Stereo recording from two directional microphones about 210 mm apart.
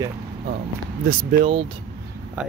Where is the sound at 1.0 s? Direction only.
30° right (ahead or behind).